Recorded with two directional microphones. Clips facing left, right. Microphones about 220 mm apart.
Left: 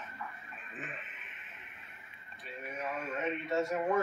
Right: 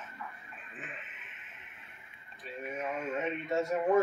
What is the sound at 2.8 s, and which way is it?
Radio, 20° right (ahead or behind).